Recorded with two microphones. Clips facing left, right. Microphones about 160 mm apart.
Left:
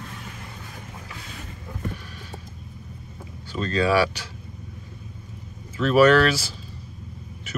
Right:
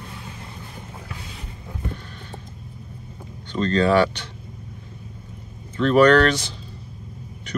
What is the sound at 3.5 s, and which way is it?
Speech, 10° left (ahead or behind).